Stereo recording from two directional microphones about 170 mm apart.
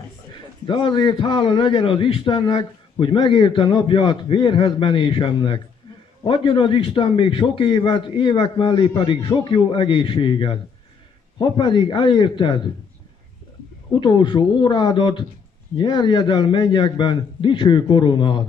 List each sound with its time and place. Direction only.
0.7 s a man's voice: 30° left (ahead or behind)
13.9 s a man's voice: 25° left (ahead or behind)